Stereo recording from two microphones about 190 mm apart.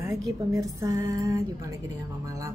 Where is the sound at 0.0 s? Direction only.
15° right (ahead or behind).